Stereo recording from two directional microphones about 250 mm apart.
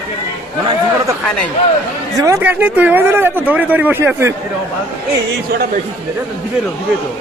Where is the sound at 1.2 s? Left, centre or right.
Centre.